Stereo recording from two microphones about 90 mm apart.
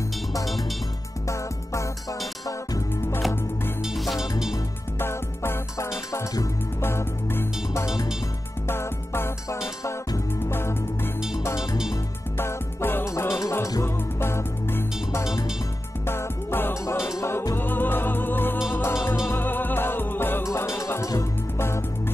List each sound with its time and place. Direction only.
1.3 s music: 35° left (ahead or behind)
3.8 s music: centre (ahead or behind)
4.9 s music: 25° left (ahead or behind)
12.4 s music: 25° left (ahead or behind)